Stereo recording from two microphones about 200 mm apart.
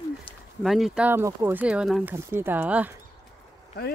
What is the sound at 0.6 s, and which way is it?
Speech, centre (ahead or behind).